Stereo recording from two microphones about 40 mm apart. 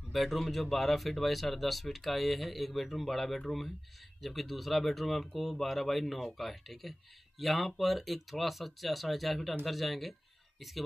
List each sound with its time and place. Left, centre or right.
0.1 s speech: centre